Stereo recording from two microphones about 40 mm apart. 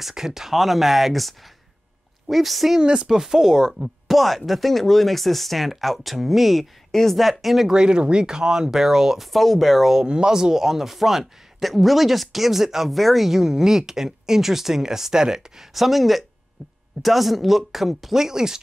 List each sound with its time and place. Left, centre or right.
0.0 s speech: centre
2.8 s speech: right
3.1 s speech: centre
4.2 s speech: centre
7.7 s speech: right
9.3 s speech: centre
9.9 s speech: centre